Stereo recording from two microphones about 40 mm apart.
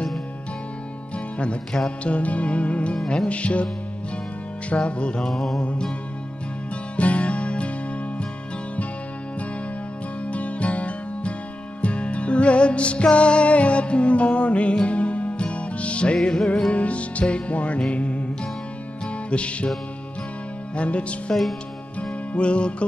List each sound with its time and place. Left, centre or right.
1.1 s music: left
1.7 s music: centre
2.0 s music: left
4.6 s music: left
5.3 s music: centre
5.6 s music: left
7.0 s music: left
10.2 s music: left
19.3 s music: left
20.7 s music: left
22.3 s music: left